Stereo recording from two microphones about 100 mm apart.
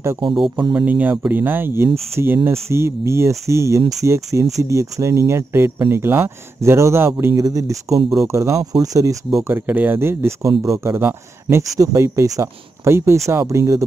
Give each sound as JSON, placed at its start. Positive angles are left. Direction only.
{"t": 0.7, "sound": "speech", "side_deg": -15}